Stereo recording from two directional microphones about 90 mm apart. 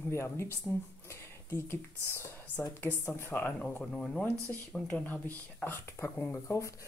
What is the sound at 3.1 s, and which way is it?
Speech, 25° left (ahead or behind).